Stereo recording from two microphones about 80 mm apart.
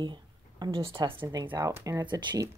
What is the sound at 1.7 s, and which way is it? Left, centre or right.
Speech, right.